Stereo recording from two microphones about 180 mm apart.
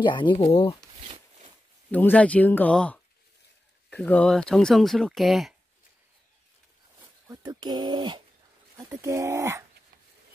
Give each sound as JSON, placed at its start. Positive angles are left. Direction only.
{"t": 0.0, "sound": "speech", "side_deg": 25}
{"t": 0.9, "sound": "a sound", "side_deg": -35}
{"t": 1.9, "sound": "speech", "side_deg": 10}
{"t": 7.0, "sound": "speech", "side_deg": -25}